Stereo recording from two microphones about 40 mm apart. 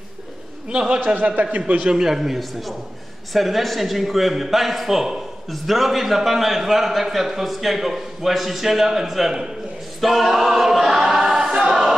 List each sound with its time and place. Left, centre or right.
0.8 s a man's voice: right
1.8 s a man's voice: right
2.0 s a man's voice: centre
9.9 s choir: centre